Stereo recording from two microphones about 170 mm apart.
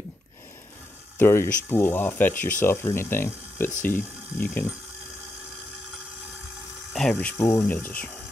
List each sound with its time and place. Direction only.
1.1 s speech: 15° left (ahead or behind)
6.9 s speech: 5° left (ahead or behind)